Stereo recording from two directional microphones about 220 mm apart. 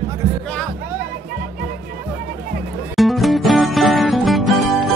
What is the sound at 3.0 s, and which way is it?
Music, centre (ahead or behind).